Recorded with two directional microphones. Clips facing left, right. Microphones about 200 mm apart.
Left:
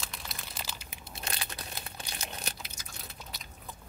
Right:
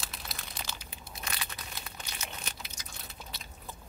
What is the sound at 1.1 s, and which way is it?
Crumpling, 30° left (ahead or behind).